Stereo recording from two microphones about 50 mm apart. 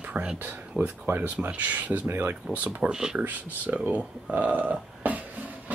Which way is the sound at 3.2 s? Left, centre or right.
Right.